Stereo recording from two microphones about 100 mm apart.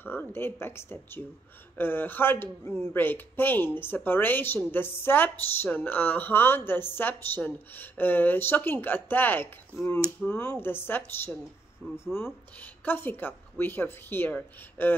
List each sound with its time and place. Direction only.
0.0 s speech: 20° left (ahead or behind)